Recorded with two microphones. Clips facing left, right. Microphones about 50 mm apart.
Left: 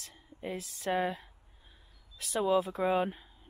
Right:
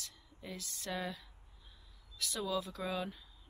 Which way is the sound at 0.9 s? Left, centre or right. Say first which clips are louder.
Left 9 dB; left.